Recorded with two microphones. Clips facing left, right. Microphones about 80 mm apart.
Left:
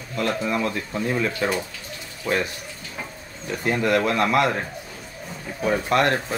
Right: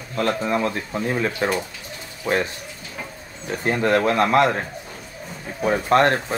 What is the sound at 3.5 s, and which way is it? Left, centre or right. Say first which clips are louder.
Speech: right 2 dB; right.